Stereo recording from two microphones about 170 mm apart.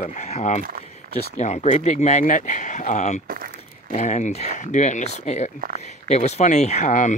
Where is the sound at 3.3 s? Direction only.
55° right (ahead or behind).